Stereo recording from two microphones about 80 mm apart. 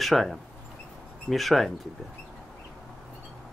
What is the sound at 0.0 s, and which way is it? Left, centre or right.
Speech, centre.